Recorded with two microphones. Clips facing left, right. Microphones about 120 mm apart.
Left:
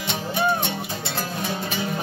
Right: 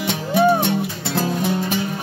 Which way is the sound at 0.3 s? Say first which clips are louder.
Right 8 dB; 80° right.